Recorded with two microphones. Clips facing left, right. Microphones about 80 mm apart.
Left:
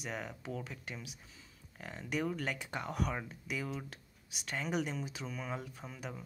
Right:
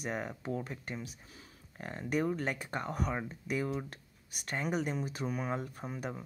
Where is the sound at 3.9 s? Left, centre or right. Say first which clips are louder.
Right 1 dB; right.